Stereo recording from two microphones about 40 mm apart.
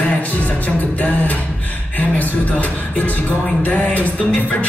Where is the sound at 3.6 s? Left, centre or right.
Left.